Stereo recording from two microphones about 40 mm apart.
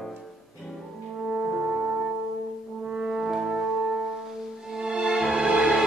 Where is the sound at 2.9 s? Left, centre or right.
Centre.